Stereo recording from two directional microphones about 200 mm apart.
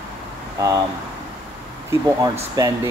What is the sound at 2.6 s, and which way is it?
Speech, 20° right (ahead or behind).